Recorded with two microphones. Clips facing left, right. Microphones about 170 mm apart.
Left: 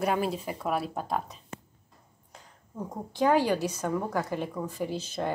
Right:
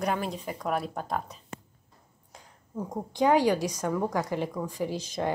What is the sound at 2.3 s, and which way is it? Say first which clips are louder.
A woman's voice: even; 15° right (ahead or behind).